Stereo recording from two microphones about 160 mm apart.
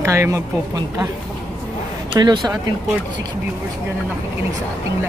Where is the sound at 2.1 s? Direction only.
30° right (ahead or behind).